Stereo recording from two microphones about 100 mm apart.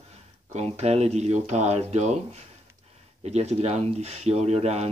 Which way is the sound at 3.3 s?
90° right.